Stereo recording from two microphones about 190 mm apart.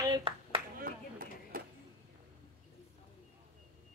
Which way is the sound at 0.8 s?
50° right (ahead or behind).